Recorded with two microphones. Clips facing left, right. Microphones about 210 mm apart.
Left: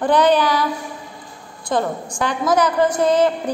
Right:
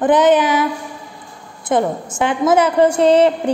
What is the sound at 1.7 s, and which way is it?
A woman's voice, 20° right (ahead or behind).